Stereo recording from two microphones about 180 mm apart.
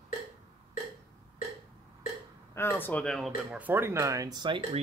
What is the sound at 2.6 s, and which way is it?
Speech, 10° left (ahead or behind).